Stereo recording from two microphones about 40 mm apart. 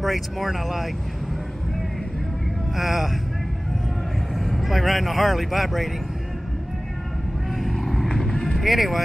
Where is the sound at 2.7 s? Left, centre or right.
Centre.